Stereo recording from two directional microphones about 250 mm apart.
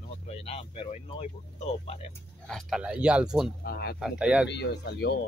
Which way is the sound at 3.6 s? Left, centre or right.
Left.